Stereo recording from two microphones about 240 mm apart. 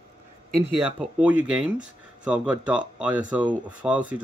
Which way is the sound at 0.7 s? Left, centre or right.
Centre.